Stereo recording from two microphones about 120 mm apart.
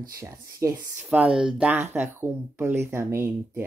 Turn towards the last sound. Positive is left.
turn(degrees=-20)  # may be behind; listen again after turning